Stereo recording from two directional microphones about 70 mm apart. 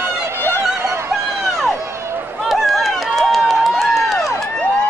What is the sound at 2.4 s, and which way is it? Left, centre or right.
Run, centre.